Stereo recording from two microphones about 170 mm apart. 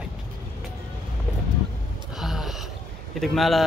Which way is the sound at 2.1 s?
Centre (ahead or behind).